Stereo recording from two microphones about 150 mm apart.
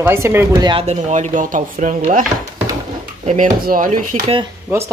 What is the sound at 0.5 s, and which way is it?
Speech, 30° right (ahead or behind).